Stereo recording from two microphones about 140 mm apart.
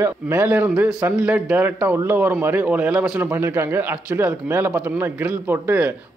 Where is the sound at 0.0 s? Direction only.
15° right (ahead or behind).